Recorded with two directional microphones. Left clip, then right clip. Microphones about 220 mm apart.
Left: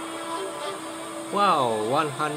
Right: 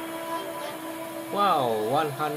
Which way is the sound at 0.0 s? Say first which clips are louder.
Left 1 dB; 25° left (ahead or behind).